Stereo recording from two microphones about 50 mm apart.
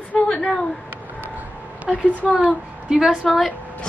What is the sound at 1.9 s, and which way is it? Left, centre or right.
Speech, right.